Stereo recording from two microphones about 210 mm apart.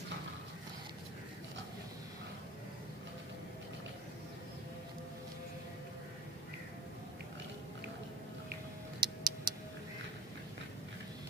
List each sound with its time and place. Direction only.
9.0 s tick-tock: 20° right (ahead or behind)